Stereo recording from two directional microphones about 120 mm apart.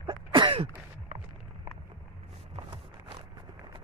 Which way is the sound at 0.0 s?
45° right (ahead or behind).